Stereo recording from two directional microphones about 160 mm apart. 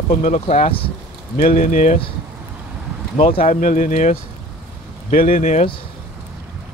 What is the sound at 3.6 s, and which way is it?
Speech, 50° left (ahead or behind).